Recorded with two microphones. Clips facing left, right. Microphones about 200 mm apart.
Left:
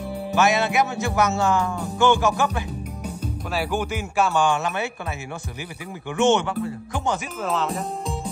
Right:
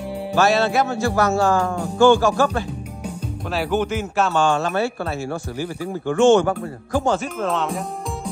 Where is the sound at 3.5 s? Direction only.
10° left (ahead or behind).